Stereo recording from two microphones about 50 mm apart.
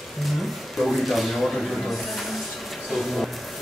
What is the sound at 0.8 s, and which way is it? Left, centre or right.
A man's voice, centre.